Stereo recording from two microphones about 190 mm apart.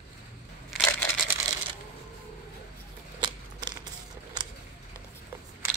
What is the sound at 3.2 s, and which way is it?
Scissors, 20° right (ahead or behind).